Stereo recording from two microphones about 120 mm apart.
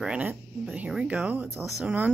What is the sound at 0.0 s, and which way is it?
Speech, 10° right (ahead or behind).